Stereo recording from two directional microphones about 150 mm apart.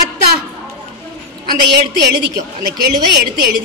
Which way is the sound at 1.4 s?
90° right.